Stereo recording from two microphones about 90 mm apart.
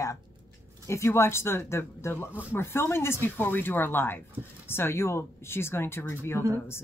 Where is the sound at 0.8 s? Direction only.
30° left (ahead or behind).